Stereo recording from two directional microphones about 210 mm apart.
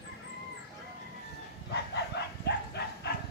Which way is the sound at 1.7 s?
55° left (ahead or behind).